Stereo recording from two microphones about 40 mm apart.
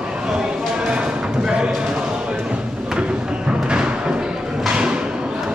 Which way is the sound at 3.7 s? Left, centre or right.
Right.